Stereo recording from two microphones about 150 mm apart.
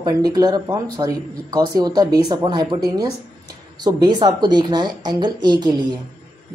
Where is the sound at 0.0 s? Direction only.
25° right (ahead or behind).